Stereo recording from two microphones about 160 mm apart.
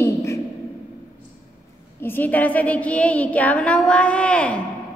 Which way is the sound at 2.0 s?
10° left (ahead or behind).